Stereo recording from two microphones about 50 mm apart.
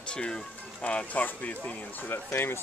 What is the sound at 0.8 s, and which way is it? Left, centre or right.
Speech, left.